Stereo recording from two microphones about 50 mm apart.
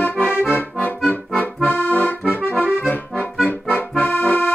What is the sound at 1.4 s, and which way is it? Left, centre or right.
Accordion, left.